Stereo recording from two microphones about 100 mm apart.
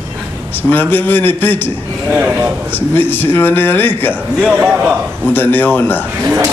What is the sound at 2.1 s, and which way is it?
Speech, 15° right (ahead or behind).